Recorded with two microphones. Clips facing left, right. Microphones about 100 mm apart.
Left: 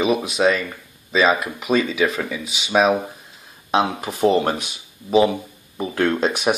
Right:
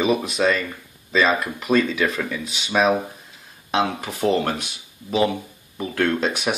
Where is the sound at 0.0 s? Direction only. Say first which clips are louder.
Left 2 dB; 10° left (ahead or behind).